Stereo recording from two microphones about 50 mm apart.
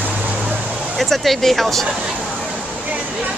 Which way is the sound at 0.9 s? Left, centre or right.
Centre.